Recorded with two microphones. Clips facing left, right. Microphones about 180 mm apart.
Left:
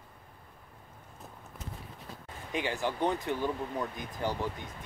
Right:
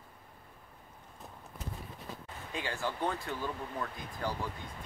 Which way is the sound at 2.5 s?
20° left (ahead or behind).